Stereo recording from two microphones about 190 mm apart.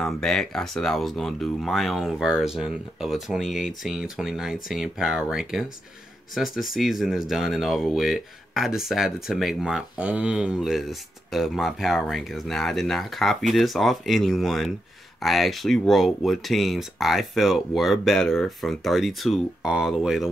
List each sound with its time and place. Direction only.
0.0 s speech: centre (ahead or behind)